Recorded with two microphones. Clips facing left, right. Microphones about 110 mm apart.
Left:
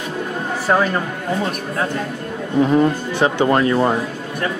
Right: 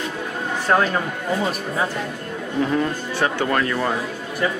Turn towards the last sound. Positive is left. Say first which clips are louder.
# left 6 dB
turn(degrees=25)  # may be behind; listen again after turning